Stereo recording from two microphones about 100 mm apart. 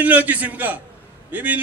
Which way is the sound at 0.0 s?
15° right (ahead or behind).